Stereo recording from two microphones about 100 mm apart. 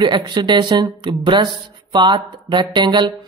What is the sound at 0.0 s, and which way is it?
Speech, 50° right (ahead or behind).